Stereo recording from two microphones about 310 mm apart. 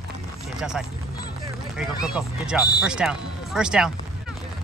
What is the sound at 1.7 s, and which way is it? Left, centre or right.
Speech, centre.